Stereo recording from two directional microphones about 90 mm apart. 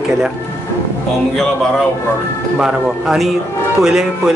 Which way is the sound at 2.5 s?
5° right (ahead or behind).